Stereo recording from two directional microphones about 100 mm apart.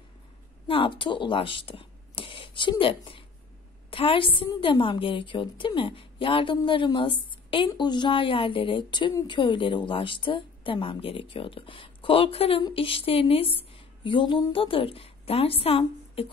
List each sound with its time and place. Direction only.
0.7 s a woman's voice: 65° left (ahead or behind)